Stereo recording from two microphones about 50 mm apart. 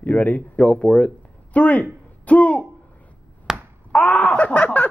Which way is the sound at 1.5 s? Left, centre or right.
Left.